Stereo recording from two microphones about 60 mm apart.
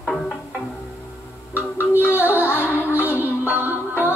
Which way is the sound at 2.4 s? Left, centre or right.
Left.